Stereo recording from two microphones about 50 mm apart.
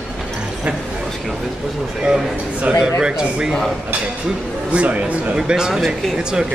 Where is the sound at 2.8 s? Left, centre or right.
Centre.